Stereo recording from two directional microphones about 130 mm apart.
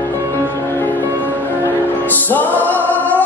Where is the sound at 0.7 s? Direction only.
15° left (ahead or behind).